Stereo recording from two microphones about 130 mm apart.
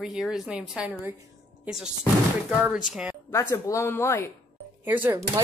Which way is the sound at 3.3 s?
25° left (ahead or behind).